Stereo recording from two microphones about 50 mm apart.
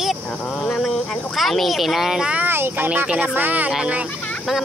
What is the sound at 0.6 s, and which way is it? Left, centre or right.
Speech, centre.